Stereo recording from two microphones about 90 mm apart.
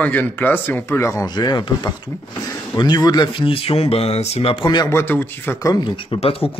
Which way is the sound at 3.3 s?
80° left.